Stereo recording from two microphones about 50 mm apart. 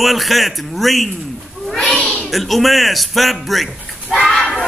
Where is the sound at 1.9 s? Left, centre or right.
Left.